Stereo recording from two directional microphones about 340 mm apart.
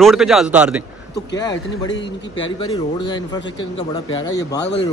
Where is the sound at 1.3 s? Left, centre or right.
Centre.